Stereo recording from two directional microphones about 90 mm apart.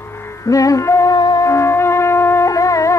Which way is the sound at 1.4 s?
30° left (ahead or behind).